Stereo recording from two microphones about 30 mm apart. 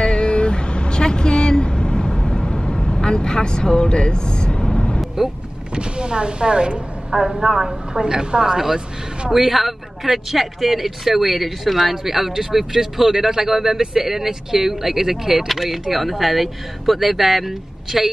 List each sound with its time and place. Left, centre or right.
0.0 s vehicle: left
5.8 s speech: right
7.1 s speech: centre
7.9 s a woman's voice: right
8.5 s speech: centre
15.4 s speech: centre